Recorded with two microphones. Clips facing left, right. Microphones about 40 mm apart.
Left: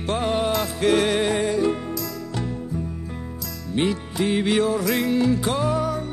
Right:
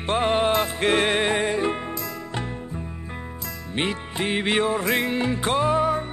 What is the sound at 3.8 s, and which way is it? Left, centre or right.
Music, right.